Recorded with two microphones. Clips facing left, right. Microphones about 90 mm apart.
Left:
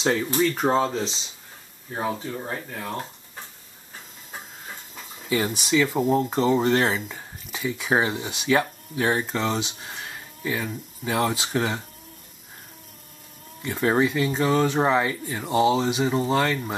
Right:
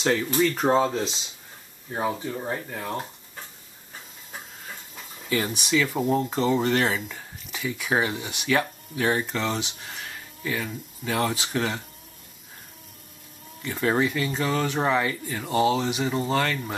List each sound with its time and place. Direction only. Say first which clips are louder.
0.0 s speech: even; 5° left (ahead or behind)
5.3 s speech: left 2 dB; 15° left (ahead or behind)
5.9 s speech: left 2 dB; 5° left (ahead or behind)
6.7 s speech: left 2 dB; 20° left (ahead or behind)
7.0 s speech: left 1 dB; 10° left (ahead or behind)
9.8 s a sound: left 1 dB; 15° left (ahead or behind)
11.1 s speech: left 2 dB; 15° left (ahead or behind)
13.6 s speech: left 2 dB; 5° left (ahead or behind)